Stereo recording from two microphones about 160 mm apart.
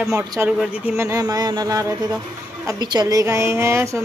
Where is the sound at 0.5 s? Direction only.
5° right (ahead or behind).